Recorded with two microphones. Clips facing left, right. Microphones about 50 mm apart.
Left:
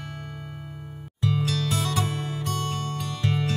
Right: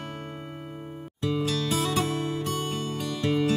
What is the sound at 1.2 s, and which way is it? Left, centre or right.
Music, centre.